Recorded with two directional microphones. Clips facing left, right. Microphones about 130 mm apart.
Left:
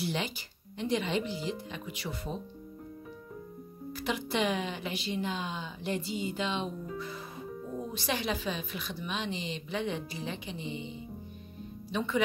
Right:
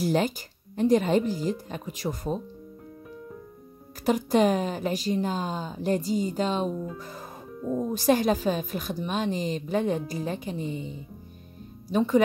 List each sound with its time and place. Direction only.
0.0 s a woman's voice: 45° right (ahead or behind)
4.0 s a woman's voice: 45° right (ahead or behind)